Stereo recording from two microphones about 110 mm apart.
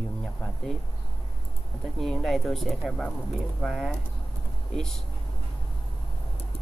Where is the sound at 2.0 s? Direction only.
5° left (ahead or behind).